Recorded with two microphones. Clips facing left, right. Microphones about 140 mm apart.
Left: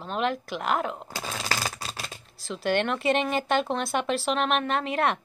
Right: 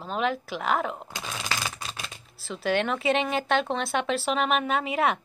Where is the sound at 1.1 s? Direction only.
35° left (ahead or behind).